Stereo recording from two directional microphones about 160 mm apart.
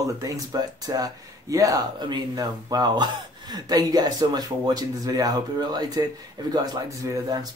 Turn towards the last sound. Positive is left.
turn(degrees=-20)  # may be behind; listen again after turning